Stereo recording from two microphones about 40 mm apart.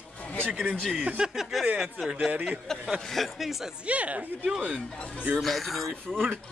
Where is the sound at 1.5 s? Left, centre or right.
Centre.